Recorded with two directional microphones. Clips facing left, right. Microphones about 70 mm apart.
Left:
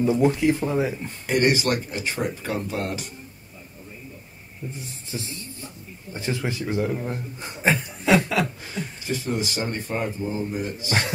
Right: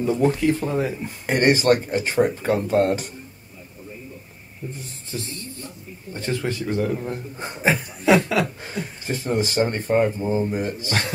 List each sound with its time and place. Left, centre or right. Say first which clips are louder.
0.0 s speech: even; centre
1.2 s speech: right 3 dB; right
6.1 s speech: right 2 dB; centre
9.0 s speech: right 4 dB; right